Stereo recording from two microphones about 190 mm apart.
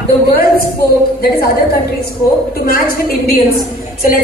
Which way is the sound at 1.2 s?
50° left (ahead or behind).